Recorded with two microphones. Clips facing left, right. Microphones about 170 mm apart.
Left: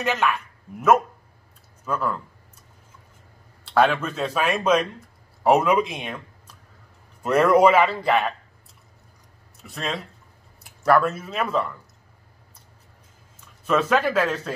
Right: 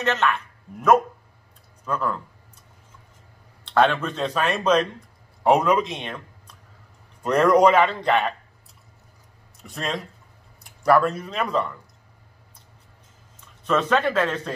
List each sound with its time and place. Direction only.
0.0 s speech: 10° left (ahead or behind)
3.6 s speech: 5° left (ahead or behind)
9.6 s speech: centre (ahead or behind)
13.7 s speech: 5° left (ahead or behind)